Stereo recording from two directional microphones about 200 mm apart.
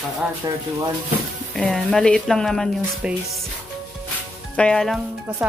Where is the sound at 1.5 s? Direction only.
Centre (ahead or behind).